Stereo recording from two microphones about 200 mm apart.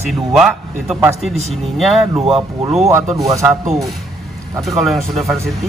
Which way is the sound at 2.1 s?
30° right (ahead or behind).